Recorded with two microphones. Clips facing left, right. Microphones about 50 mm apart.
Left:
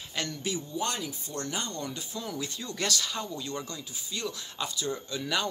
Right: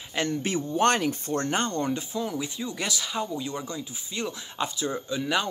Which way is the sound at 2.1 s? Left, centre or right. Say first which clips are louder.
Right 6 dB; centre.